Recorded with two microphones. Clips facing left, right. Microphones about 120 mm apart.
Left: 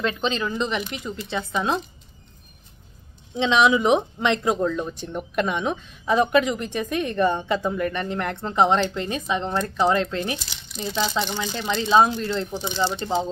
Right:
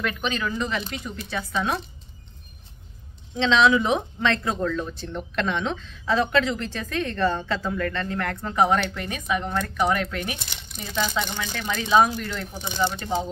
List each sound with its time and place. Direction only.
0.0 s speech: 25° left (ahead or behind)
3.3 s speech: 15° left (ahead or behind)
10.7 s speech: 55° right (ahead or behind)
11.2 s speech: 25° left (ahead or behind)